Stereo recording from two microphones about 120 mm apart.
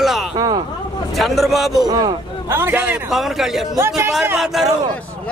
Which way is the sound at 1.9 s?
35° right (ahead or behind).